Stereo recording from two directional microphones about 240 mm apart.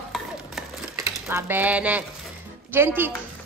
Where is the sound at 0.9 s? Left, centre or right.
Centre.